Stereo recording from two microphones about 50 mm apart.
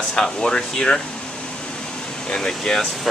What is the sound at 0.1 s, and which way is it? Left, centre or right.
Speech, centre.